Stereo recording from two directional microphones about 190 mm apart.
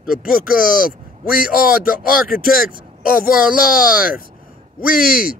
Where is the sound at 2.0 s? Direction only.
50° left (ahead or behind).